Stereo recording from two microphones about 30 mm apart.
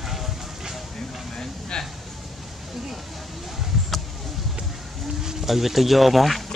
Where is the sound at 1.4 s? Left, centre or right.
Left.